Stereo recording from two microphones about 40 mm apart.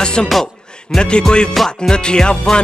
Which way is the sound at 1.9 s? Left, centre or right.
Left.